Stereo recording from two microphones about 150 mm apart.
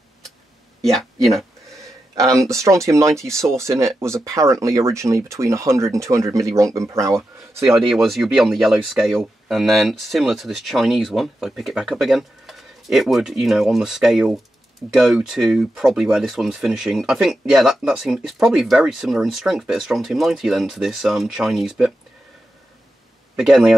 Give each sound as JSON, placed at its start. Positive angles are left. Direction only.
{"t": 0.9, "sound": "speech", "side_deg": 0}
{"t": 2.1, "sound": "speech", "side_deg": -20}
{"t": 7.7, "sound": "speech", "side_deg": 0}
{"t": 23.4, "sound": "speech", "side_deg": 0}